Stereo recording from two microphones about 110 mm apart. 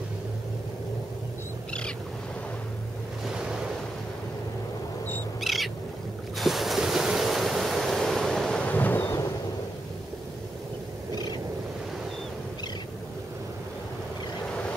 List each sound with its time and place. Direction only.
1.7 s wild animals: 10° left (ahead or behind)
5.4 s owl: centre (ahead or behind)
6.3 s waves: centre (ahead or behind); by 9.1 s 15° left (ahead or behind)